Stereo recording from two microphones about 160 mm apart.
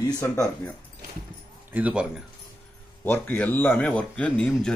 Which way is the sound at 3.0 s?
10° left (ahead or behind).